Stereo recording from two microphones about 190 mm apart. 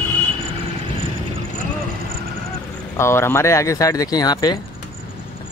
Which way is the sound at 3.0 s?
15° left (ahead or behind).